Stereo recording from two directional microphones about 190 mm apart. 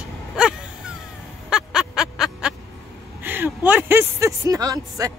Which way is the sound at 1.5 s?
5° right (ahead or behind).